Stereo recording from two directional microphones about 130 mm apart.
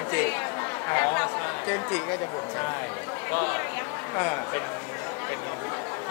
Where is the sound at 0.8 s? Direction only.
25° left (ahead or behind).